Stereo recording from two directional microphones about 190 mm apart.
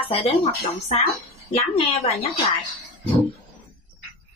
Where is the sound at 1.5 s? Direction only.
30° left (ahead or behind).